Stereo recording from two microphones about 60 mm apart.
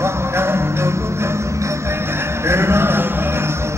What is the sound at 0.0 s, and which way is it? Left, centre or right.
Music, right.